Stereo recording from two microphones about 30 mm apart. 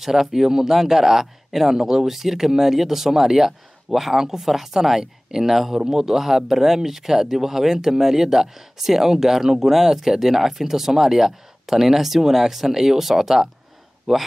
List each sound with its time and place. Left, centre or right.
0.0 s speech: centre